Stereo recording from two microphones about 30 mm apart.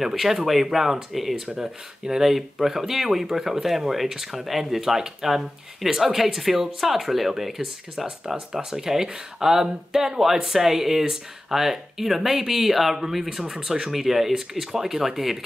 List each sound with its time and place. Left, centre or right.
0.0 s speech: centre
8.5 s speech: centre
13.7 s speech: centre
13.9 s speech: centre